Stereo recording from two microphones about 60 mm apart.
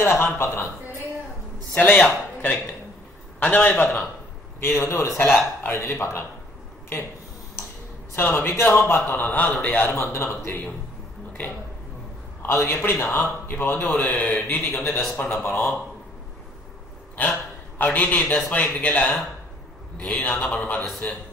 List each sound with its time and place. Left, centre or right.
0.0 s speech: left
2.0 s a man's voice: left
4.6 s a man's voice: left
8.2 s a man's voice: left
9.9 s a man's voice: left
12.4 s a man's voice: left
14.7 s a man's voice: centre
15.1 s a man's voice: left
17.2 s a man's voice: left